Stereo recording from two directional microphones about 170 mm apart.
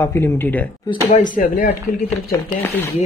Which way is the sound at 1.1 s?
50° left (ahead or behind).